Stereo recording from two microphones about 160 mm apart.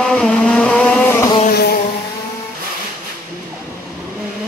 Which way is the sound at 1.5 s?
75° left (ahead or behind).